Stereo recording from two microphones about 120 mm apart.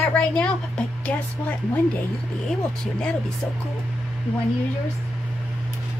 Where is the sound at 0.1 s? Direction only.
10° left (ahead or behind).